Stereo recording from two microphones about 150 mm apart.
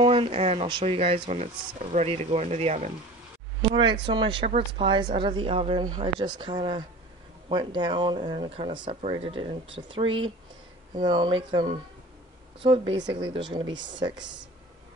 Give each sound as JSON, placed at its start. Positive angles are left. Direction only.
{"t": 0.0, "sound": "speech", "side_deg": -40}
{"t": 3.6, "sound": "a woman's voice", "side_deg": -30}